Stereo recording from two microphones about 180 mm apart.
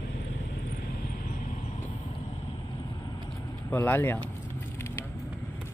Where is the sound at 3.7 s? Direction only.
10° left (ahead or behind).